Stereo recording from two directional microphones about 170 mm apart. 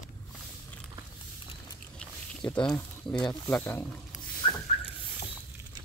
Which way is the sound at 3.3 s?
15° left (ahead or behind).